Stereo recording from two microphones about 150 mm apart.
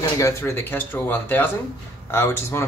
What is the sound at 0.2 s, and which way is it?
Speech, 15° left (ahead or behind).